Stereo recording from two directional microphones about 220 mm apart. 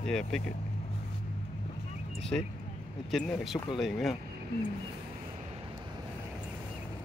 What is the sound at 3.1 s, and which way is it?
Speech, centre (ahead or behind).